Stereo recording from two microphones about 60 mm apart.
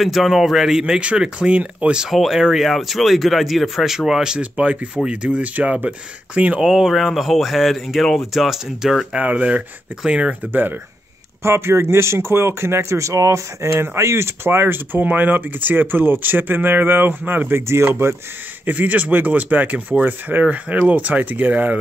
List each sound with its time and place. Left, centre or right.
0.0 s speech: centre
2.0 s speech: centre
4.4 s speech: right
6.6 s speech: centre
9.1 s speech: right
10.5 s speech: right
11.4 s speech: right
18.7 s speech: right